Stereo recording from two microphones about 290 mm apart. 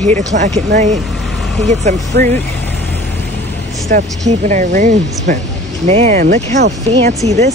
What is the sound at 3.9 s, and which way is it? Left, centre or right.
Speech, right.